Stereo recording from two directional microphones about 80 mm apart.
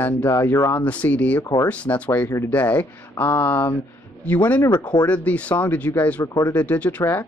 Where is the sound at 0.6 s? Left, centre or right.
Left.